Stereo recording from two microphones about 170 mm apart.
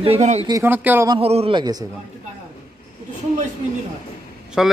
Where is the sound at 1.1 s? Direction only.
35° right (ahead or behind).